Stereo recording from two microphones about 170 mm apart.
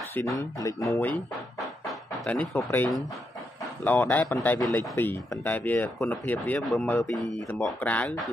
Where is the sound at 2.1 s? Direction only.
5° left (ahead or behind).